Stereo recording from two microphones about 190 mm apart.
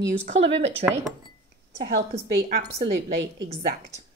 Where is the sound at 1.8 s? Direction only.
60° right (ahead or behind).